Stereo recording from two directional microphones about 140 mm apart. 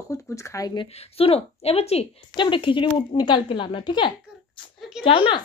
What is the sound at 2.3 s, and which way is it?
Speech, 35° left (ahead or behind).